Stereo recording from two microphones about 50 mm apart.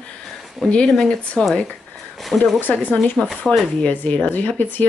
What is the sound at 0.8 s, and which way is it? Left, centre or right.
Speech, centre.